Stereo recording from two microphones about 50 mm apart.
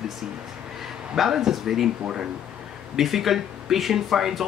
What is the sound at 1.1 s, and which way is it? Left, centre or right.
Speech, centre.